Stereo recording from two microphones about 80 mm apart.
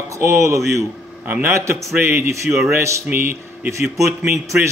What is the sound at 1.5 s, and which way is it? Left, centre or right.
A man's voice, right.